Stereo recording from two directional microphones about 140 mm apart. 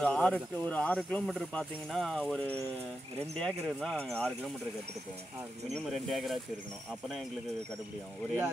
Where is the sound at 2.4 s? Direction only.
10° left (ahead or behind).